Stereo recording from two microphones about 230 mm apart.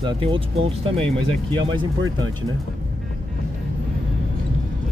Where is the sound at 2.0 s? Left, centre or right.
Right.